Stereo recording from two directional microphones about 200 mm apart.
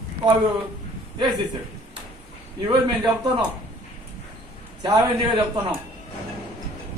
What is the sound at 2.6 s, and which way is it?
Speech, 20° right (ahead or behind).